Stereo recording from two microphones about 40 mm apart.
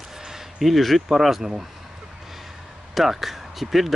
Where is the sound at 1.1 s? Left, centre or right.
Centre.